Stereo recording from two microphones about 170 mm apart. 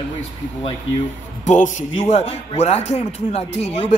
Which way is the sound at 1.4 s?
45° left (ahead or behind).